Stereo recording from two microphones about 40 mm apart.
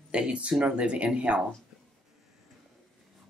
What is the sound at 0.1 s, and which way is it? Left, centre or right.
Speech, right.